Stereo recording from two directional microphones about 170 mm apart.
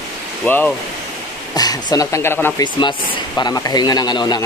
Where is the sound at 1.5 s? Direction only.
20° left (ahead or behind).